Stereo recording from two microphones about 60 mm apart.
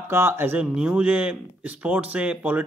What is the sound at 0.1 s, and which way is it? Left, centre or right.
Speech, right.